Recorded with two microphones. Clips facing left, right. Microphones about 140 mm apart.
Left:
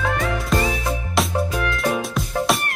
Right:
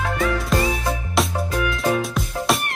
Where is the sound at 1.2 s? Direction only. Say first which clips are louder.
Left 1 dB; centre (ahead or behind).